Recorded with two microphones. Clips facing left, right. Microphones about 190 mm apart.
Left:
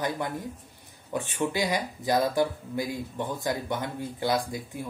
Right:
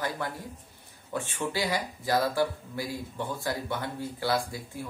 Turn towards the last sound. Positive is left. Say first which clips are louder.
# left 2 dB
turn(degrees=20)  # may be behind; listen again after turning